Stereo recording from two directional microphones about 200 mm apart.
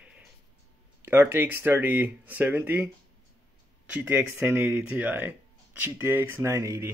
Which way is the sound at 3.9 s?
10° right (ahead or behind).